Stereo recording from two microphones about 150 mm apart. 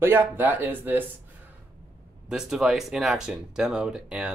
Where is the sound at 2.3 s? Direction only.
5° right (ahead or behind).